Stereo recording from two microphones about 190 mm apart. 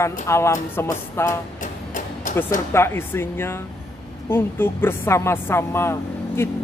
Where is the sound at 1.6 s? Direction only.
45° left (ahead or behind).